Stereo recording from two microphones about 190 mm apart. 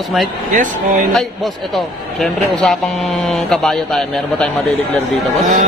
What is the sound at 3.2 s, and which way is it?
A man's voice, centre (ahead or behind).